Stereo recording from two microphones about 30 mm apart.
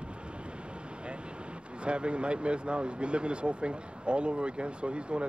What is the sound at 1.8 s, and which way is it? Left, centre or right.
Speech, right.